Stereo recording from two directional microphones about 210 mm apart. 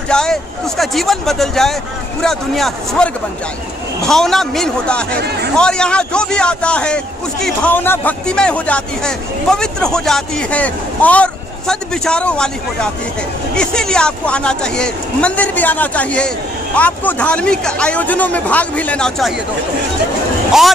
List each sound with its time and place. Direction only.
0.1 s a man's voice: 5° left (ahead or behind)
5.1 s speech: 50° right (ahead or behind)
5.6 s a man's voice: 5° left (ahead or behind)